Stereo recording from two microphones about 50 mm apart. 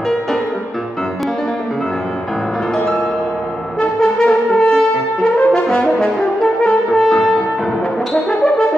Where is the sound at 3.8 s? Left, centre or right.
Centre.